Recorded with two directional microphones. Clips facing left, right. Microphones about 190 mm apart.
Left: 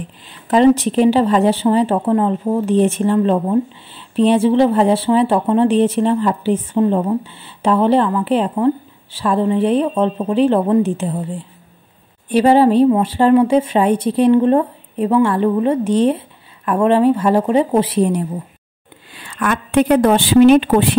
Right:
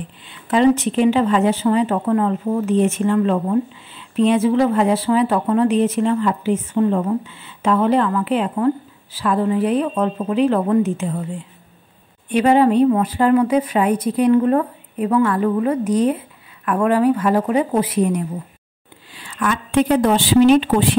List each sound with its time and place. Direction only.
0.2 s speech: 40° left (ahead or behind)
12.3 s speech: 35° left (ahead or behind)
19.1 s a woman's voice: 55° left (ahead or behind)